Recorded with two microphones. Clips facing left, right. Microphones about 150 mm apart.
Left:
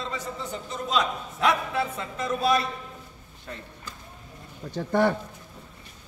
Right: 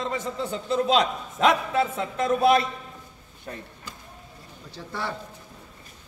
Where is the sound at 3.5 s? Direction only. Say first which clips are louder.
Right 2 dB; 35° right (ahead or behind).